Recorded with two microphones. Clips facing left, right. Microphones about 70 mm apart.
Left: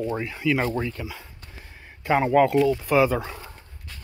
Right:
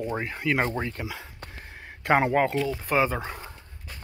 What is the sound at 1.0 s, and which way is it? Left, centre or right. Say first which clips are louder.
Speech: right 1 dB; right.